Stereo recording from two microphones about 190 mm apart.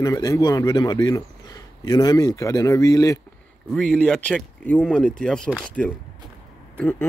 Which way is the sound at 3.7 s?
5° left (ahead or behind).